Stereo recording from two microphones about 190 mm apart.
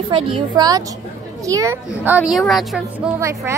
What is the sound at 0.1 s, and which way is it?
A woman's voice, 25° right (ahead or behind).